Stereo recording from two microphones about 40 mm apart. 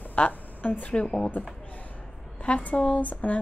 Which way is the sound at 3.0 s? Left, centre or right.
Left.